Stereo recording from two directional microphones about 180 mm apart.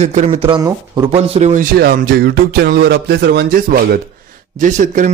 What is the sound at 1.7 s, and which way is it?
Speech, 60° right (ahead or behind).